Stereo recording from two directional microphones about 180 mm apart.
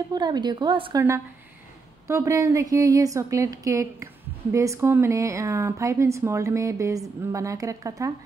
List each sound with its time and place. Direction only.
0.1 s a woman's voice: 25° right (ahead or behind)
2.0 s a woman's voice: 15° right (ahead or behind)